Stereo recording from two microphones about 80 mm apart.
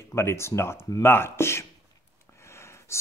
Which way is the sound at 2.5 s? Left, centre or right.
Left.